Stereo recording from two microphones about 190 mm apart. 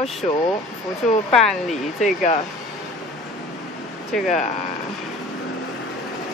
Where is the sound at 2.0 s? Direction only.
40° left (ahead or behind).